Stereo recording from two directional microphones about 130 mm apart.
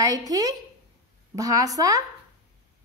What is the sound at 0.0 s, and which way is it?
A woman's voice, 30° right (ahead or behind).